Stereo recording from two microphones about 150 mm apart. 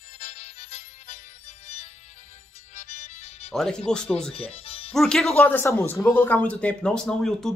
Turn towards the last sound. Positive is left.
turn(degrees=5)  # may be behind; listen again after turning